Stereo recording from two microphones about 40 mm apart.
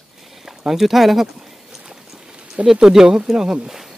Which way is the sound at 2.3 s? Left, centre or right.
Right.